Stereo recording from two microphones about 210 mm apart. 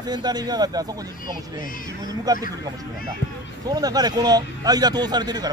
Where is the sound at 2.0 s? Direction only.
20° right (ahead or behind).